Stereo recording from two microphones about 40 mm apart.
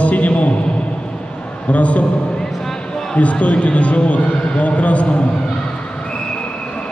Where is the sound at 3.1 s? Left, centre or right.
Left.